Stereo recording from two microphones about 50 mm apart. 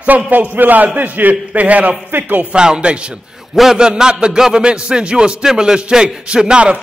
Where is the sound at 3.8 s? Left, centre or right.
Centre.